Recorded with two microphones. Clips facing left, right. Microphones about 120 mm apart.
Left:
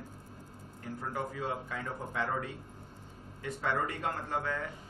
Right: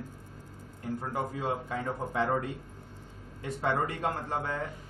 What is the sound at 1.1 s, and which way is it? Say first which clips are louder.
A man's voice: right 3 dB; 30° right (ahead or behind).